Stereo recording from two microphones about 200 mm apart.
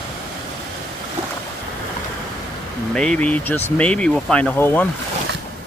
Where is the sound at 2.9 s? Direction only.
5° left (ahead or behind).